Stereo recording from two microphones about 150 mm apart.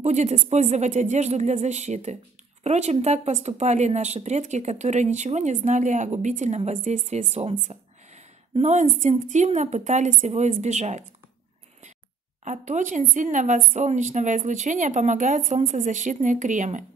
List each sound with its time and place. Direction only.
0.0 s speech: 50° right (ahead or behind)
12.4 s speech: 55° right (ahead or behind)